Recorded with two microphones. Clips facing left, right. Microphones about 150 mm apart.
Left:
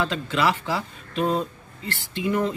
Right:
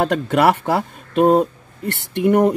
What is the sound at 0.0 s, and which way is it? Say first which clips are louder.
Speech: right 8 dB; 60° right (ahead or behind).